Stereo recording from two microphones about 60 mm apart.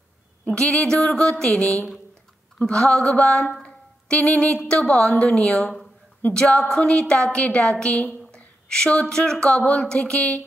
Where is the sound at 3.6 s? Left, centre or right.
Centre.